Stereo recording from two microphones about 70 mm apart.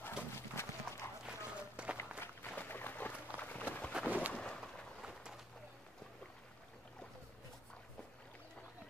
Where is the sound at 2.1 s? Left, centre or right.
Left.